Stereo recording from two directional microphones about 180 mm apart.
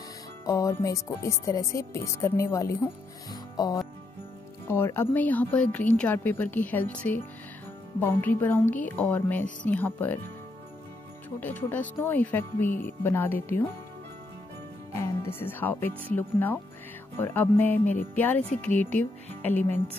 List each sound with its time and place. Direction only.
0.5 s speech: 20° left (ahead or behind)
11.2 s speech: 10° left (ahead or behind)
15.0 s speech: 10° left (ahead or behind)